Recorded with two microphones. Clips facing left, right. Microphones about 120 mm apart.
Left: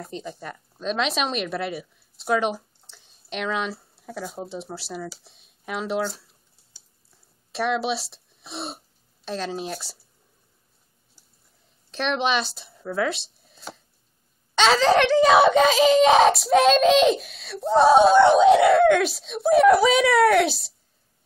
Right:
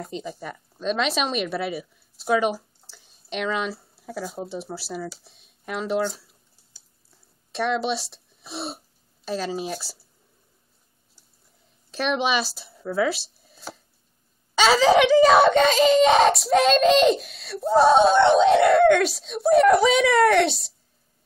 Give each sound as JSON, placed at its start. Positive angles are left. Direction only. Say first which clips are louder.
{"t": 0.0, "sound": "speech", "louder": "right 2 dB", "side_deg": -5}
{"t": 11.9, "sound": "speech", "louder": "even", "side_deg": -5}